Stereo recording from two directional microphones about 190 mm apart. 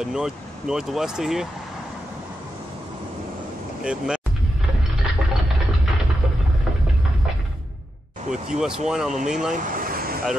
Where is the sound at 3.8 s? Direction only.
5° right (ahead or behind).